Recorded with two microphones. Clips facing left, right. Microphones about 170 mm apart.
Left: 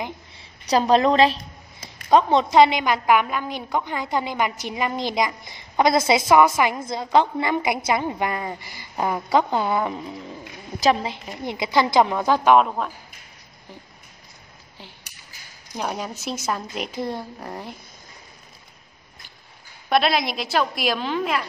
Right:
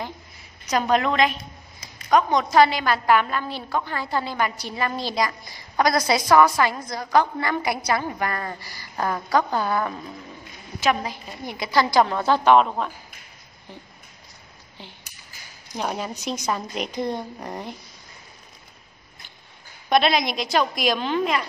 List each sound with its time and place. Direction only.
0.4 s a woman's voice: 30° left (ahead or behind); by 12.9 s 5° left (ahead or behind)
15.7 s a woman's voice: centre (ahead or behind)
19.9 s a woman's voice: centre (ahead or behind)